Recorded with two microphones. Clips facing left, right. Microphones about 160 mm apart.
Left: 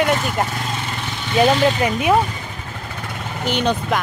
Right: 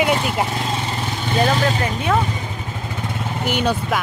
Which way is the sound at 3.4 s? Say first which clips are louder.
Left 1 dB; 10° right (ahead or behind).